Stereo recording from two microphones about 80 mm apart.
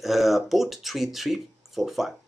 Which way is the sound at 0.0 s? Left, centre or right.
Centre.